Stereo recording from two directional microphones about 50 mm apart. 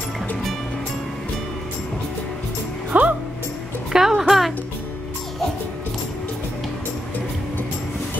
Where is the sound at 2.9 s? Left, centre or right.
Right.